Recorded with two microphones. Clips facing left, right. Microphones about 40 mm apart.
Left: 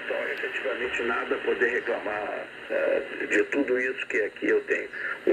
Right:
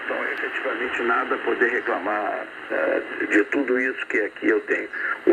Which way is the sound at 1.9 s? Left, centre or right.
Centre.